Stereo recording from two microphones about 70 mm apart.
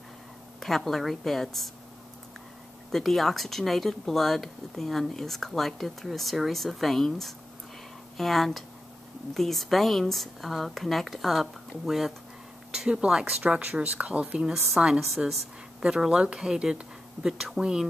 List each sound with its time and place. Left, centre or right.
0.6 s speech: centre
2.9 s speech: centre
12.7 s a woman's voice: centre